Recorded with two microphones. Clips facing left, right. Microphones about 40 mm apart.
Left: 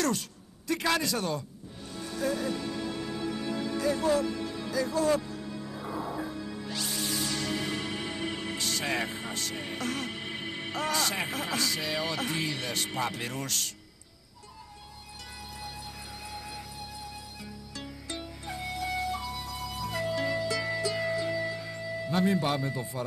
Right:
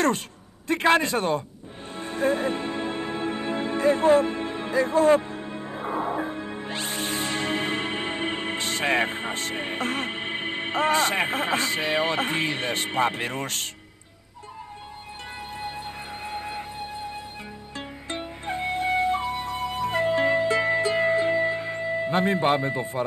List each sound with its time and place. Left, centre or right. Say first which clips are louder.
0.7 s a man's voice: right 8 dB; right
2.0 s music: right 7 dB; right
15.6 s music: right 8 dB; right
17.7 s flute: right 6 dB; right